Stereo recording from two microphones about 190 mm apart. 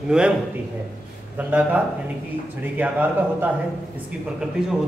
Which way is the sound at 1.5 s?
10° right (ahead or behind).